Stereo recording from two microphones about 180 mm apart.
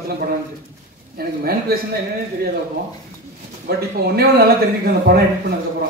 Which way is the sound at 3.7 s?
60° right (ahead or behind).